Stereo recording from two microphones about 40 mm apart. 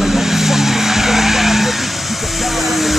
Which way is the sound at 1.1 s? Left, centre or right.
Centre.